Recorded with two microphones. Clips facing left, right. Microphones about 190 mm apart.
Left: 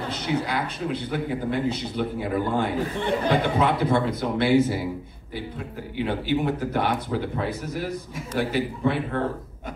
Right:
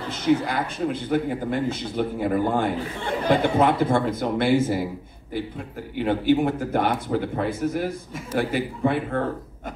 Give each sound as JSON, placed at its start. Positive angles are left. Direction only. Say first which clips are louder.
{"t": 0.1, "sound": "speech", "louder": "right 6 dB", "side_deg": -50}
{"t": 5.9, "sound": "speech", "louder": "right 4 dB", "side_deg": -50}